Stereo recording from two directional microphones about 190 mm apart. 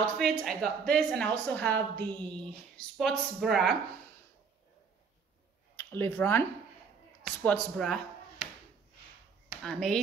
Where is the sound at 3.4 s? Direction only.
Centre (ahead or behind).